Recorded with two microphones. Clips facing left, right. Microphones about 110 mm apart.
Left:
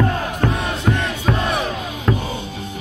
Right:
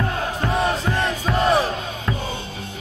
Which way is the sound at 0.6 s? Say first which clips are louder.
Even; 35° right (ahead or behind).